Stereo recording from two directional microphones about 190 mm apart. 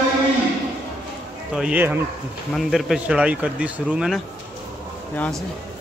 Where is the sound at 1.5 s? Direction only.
5° right (ahead or behind).